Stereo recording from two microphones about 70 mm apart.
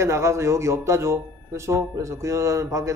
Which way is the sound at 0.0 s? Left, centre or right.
Right.